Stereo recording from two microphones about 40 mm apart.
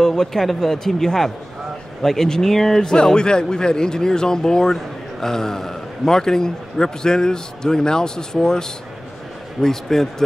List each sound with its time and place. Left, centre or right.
0.0 s a man's voice: centre